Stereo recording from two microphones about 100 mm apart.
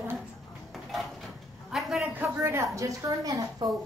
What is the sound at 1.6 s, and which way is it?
Speech, centre (ahead or behind).